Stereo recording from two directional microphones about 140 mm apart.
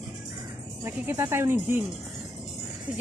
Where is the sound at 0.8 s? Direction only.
15° right (ahead or behind).